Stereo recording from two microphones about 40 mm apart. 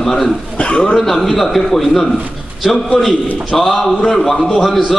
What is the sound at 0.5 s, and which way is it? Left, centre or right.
Speech, left.